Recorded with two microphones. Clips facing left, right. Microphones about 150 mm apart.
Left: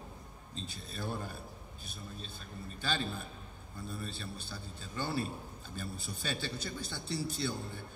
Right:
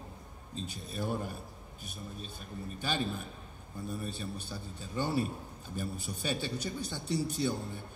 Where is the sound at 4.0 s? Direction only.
15° right (ahead or behind).